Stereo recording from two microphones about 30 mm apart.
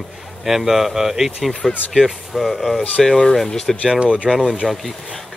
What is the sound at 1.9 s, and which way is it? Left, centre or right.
Speech, centre.